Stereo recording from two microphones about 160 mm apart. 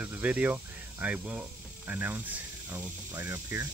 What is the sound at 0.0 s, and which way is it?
Speech, 10° right (ahead or behind).